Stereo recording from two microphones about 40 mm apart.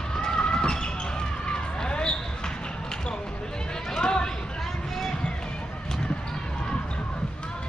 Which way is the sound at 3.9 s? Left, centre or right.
Centre.